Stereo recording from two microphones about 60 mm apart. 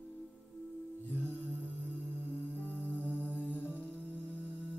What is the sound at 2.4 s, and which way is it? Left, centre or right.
Music, left.